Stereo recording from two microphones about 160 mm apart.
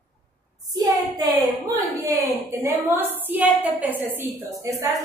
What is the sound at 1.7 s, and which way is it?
A woman's voice, 20° right (ahead or behind).